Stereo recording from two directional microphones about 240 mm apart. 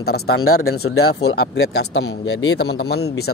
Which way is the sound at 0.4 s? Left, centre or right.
Left.